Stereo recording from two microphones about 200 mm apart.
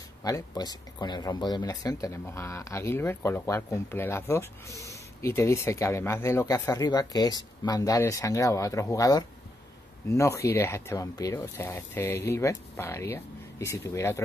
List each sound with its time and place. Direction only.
0.2 s speech: 15° left (ahead or behind)